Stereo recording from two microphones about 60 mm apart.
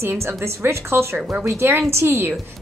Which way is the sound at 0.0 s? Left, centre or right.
Right.